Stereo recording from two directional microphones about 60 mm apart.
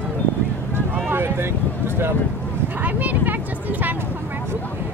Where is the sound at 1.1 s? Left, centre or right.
Right.